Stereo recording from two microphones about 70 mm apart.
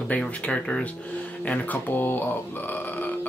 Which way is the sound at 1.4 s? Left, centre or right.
Left.